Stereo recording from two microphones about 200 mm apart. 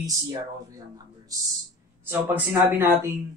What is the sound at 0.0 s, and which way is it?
Speech, 20° right (ahead or behind).